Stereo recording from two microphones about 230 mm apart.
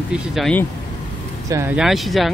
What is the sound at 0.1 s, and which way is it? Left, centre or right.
Speech, centre.